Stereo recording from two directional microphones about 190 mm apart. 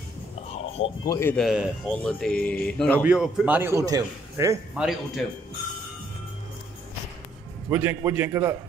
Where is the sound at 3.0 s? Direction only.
5° right (ahead or behind).